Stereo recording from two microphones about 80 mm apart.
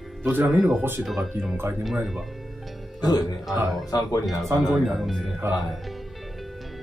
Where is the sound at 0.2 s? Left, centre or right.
Right.